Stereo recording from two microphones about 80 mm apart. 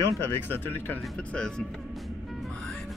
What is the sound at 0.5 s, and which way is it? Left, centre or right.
Speech, left.